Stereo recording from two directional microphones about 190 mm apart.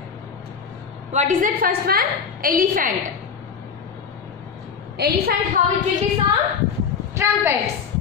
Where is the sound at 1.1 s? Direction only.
45° right (ahead or behind).